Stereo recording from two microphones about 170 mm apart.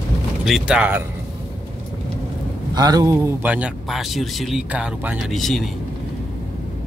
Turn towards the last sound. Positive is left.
turn(degrees=0)  # may be behind; listen again after turning